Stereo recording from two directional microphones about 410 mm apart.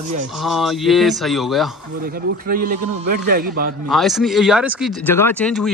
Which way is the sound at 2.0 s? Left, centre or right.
Right.